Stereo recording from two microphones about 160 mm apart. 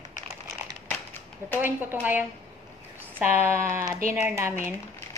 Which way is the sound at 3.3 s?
15° right (ahead or behind).